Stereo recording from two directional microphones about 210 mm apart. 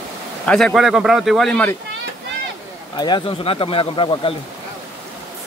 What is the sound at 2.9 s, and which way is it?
Speech, 20° left (ahead or behind).